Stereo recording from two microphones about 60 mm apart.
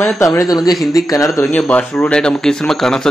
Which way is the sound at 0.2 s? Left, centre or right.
Left.